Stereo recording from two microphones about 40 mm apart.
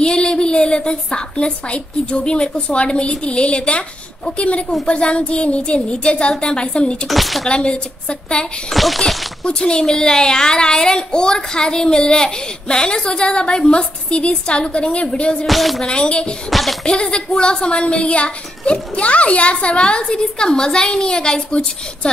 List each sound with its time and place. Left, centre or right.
0.0 s a woman's voice: left
7.1 s speech: centre
7.4 s speech: left
8.7 s speech: centre
9.0 s speech: centre
15.4 s speech: centre
15.9 s speech: left
16.4 s speech: centre
16.8 s speech: left